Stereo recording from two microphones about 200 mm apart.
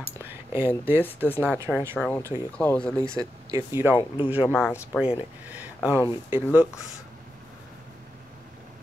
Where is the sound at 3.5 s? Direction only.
10° right (ahead or behind).